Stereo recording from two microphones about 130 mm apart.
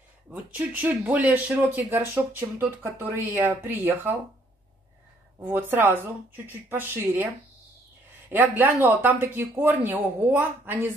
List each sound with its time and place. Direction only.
0.3 s speech: 15° right (ahead or behind)
5.4 s speech: 15° right (ahead or behind)
8.3 s speech: 15° right (ahead or behind)